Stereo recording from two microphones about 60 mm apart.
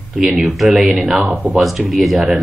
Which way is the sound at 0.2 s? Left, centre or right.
Centre.